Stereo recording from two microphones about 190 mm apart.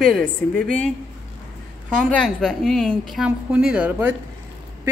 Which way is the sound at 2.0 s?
5° left (ahead or behind).